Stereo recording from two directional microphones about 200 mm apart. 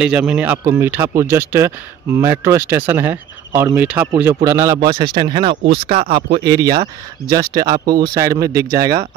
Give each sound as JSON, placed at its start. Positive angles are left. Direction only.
{"t": 0.0, "sound": "speech", "side_deg": -5}
{"t": 6.0, "sound": "speech", "side_deg": -50}
{"t": 6.4, "sound": "speech", "side_deg": -20}